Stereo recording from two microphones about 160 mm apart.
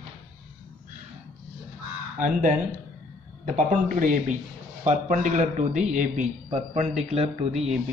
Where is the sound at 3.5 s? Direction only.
55° right (ahead or behind).